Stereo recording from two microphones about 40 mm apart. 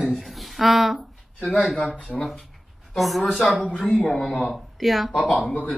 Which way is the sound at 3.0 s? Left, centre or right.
Centre.